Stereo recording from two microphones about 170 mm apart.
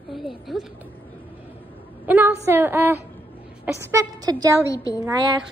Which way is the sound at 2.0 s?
10° right (ahead or behind).